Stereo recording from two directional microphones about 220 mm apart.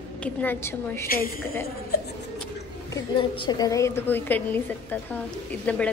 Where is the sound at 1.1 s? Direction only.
40° left (ahead or behind).